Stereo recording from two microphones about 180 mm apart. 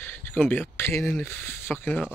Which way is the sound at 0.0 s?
10° left (ahead or behind).